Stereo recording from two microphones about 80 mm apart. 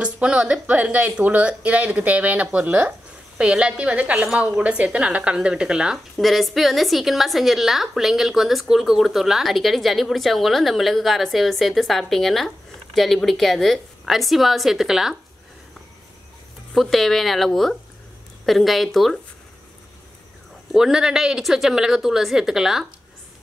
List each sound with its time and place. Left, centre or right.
0.0 s a woman's voice: centre
16.7 s a woman's voice: centre
20.7 s a woman's voice: centre